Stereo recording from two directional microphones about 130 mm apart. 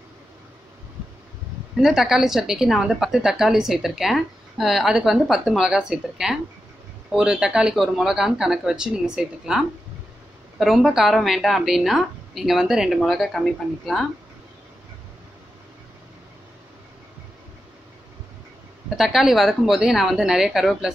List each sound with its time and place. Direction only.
1.8 s a woman's voice: 5° right (ahead or behind)
18.9 s a woman's voice: centre (ahead or behind)